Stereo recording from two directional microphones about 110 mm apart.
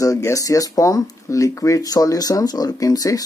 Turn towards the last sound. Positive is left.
turn(degrees=35)  # may be behind; listen again after turning